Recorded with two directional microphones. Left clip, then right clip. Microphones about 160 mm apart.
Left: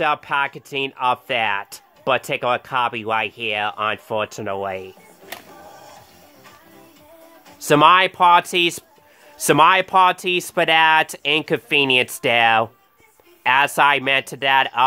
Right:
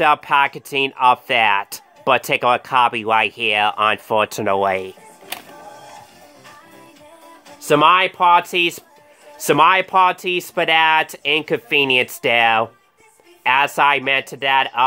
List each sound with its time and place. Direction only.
0.0 s speech: 10° right (ahead or behind)
7.6 s speech: 20° left (ahead or behind)